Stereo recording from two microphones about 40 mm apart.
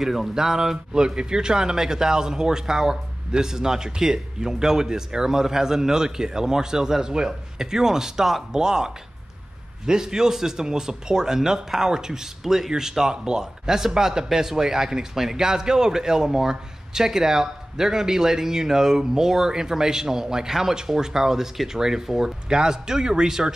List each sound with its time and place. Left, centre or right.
0.0 s speech: centre